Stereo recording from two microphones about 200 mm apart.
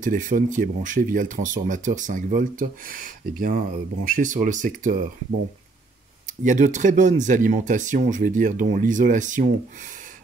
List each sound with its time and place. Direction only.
0.0 s speech: 40° right (ahead or behind)
6.2 s speech: 40° right (ahead or behind)